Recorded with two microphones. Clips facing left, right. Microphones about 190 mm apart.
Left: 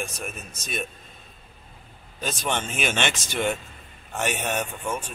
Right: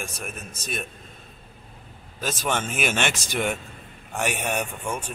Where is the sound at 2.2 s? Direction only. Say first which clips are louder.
Right 1 dB; 5° right (ahead or behind).